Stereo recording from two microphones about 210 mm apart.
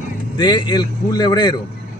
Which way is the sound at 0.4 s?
20° left (ahead or behind).